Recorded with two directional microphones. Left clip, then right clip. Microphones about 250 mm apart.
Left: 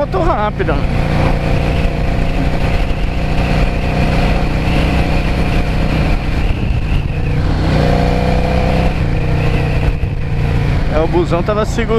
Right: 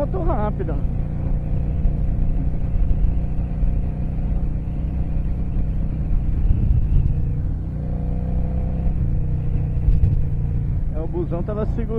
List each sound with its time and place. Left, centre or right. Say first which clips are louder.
0.1 s speech: left 10 dB; centre
11.0 s speech: left 13 dB; centre